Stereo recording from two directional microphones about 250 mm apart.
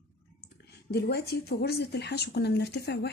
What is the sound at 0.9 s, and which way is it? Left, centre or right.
Speech, left.